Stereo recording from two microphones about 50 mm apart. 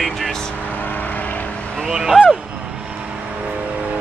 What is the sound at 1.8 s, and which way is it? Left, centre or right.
Speech, centre.